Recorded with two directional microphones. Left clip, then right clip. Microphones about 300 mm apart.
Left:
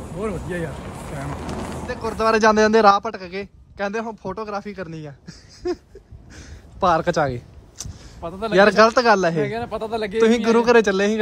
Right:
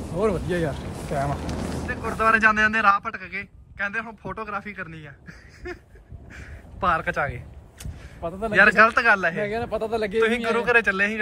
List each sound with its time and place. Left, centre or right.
0.2 s speech: centre
1.2 s speech: left
1.9 s a man's voice: centre
9.4 s a man's voice: centre
10.2 s a man's voice: centre